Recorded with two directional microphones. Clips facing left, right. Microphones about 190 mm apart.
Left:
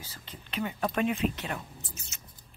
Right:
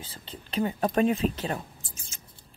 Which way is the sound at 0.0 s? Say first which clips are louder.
Right 4 dB; 30° right (ahead or behind).